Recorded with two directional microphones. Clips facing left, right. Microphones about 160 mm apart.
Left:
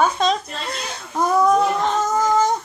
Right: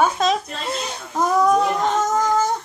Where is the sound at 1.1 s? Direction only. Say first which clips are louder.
Left 1 dB; centre (ahead or behind).